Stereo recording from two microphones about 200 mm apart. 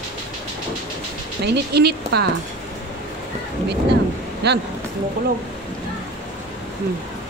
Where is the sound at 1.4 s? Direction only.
55° right (ahead or behind).